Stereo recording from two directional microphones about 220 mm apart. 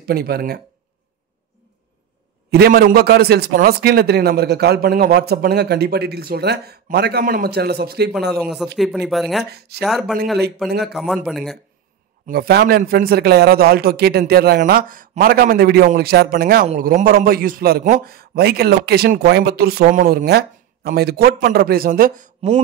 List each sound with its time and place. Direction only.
0.0 s a man's voice: 45° right (ahead or behind)
2.5 s a man's voice: 45° right (ahead or behind)
8.3 s speech: centre (ahead or behind)
9.4 s a man's voice: 50° right (ahead or behind)
9.8 s speech: centre (ahead or behind)
12.3 s a man's voice: 45° right (ahead or behind)